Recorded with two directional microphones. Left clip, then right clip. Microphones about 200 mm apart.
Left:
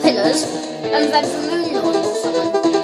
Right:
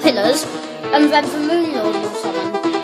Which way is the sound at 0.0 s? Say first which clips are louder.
Even; 25° right (ahead or behind).